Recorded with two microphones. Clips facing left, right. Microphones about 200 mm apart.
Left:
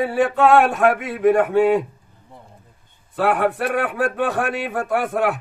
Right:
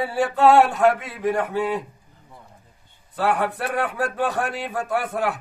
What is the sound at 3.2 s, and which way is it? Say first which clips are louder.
A man's voice: left 4 dB; 55° left (ahead or behind).